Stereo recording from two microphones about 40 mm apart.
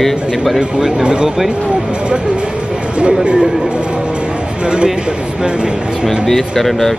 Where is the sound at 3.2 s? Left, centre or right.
Right.